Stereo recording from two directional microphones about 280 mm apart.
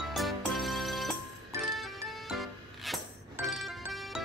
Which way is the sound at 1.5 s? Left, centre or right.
Centre.